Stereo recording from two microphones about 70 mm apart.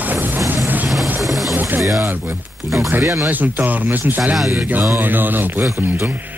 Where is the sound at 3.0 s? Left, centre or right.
Right.